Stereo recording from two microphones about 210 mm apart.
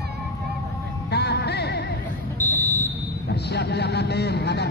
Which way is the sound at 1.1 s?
55° left (ahead or behind).